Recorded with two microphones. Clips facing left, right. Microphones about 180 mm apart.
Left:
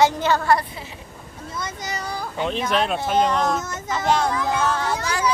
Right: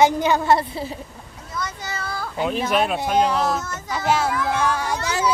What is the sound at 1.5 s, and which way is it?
Speech, 20° left (ahead or behind).